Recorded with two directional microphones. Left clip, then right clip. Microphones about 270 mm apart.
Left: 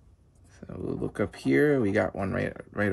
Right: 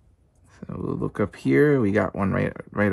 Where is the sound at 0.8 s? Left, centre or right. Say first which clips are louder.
Right 4 dB; centre.